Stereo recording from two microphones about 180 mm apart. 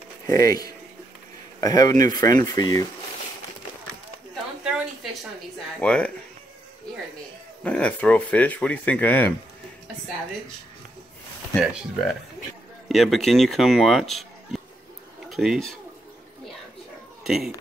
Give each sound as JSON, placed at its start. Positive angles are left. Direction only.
{"t": 0.3, "sound": "speech", "side_deg": 20}
{"t": 5.8, "sound": "speech", "side_deg": 5}
{"t": 7.6, "sound": "speech", "side_deg": 5}
{"t": 11.5, "sound": "speech", "side_deg": 0}
{"t": 17.2, "sound": "a sound", "side_deg": 0}